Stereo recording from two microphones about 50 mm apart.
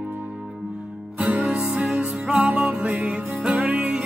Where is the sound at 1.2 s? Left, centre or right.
Right.